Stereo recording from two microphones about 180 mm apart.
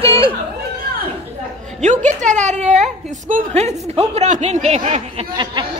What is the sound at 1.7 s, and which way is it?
A woman's voice, 45° right (ahead or behind).